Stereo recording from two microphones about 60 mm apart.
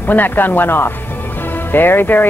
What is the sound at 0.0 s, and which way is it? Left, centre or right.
Speech, left.